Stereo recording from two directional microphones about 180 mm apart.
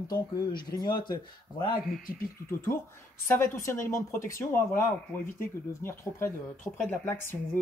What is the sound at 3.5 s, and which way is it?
Speech, 15° left (ahead or behind).